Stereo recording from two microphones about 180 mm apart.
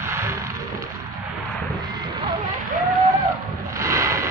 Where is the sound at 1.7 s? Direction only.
25° right (ahead or behind).